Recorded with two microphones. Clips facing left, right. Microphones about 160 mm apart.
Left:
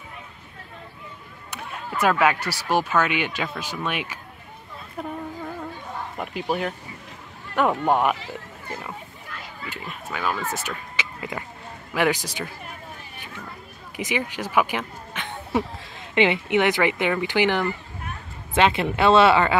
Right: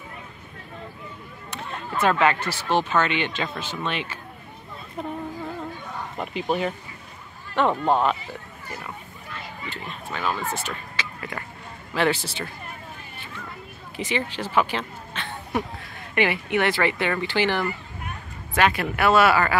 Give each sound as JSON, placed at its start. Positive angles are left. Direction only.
{"t": 1.5, "sound": "speech", "side_deg": 10}
{"t": 6.1, "sound": "speech", "side_deg": 5}
{"t": 9.7, "sound": "speech", "side_deg": 10}
{"t": 13.9, "sound": "speech", "side_deg": 15}